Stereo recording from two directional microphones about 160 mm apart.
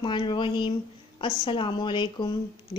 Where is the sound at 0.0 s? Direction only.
30° left (ahead or behind).